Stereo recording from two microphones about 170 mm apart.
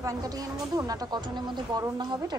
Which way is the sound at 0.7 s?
25° right (ahead or behind).